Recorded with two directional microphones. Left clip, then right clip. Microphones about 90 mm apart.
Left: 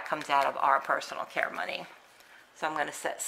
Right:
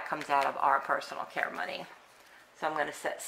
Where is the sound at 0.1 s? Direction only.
35° left (ahead or behind).